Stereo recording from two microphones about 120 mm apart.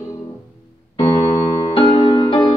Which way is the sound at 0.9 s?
50° left (ahead or behind).